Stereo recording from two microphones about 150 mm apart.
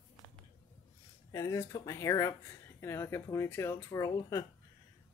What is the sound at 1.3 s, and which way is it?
Speech, 20° left (ahead or behind).